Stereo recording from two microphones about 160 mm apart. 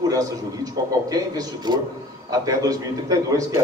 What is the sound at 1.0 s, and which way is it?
Speech, 25° right (ahead or behind).